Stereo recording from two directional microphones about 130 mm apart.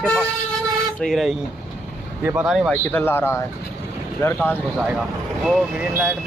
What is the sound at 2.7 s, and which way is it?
A man's voice, 15° left (ahead or behind).